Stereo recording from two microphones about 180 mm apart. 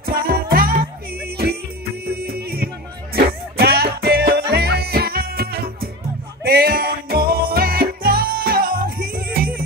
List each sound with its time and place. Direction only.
0.0 s music: 55° right (ahead or behind)
2.0 s music: 60° right (ahead or behind)